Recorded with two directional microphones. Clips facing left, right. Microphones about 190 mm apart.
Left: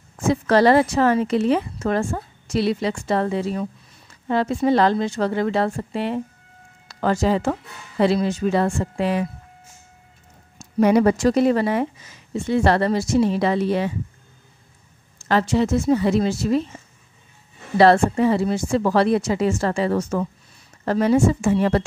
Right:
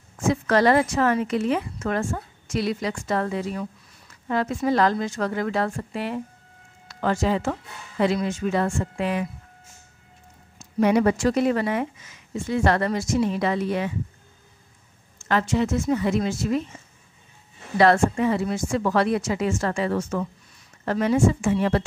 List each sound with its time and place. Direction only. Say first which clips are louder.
0.2 s a woman's voice: left 3 dB; 30° left (ahead or behind)
6.9 s a woman's voice: left 3 dB; 40° left (ahead or behind)
10.6 s a woman's voice: left 3 dB; 40° left (ahead or behind)
15.1 s a woman's voice: left 3 dB; 35° left (ahead or behind)
17.7 s a woman's voice: left 3 dB; 35° left (ahead or behind)